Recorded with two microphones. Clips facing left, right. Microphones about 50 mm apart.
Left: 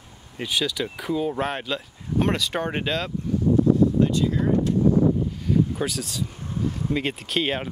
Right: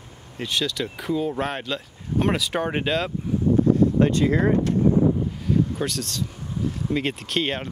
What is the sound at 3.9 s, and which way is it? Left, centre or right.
Speech, right.